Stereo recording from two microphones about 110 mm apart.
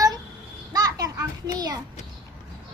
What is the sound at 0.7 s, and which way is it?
Children playing, 35° right (ahead or behind).